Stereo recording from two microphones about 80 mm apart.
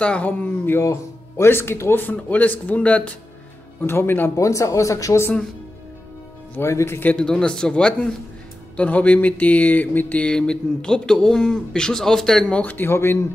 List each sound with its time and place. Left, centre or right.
0.0 s speech: centre
3.8 s speech: left
4.4 s speech: left
6.6 s speech: left
7.0 s speech: left
7.2 s a sound: centre
12.5 s speech: left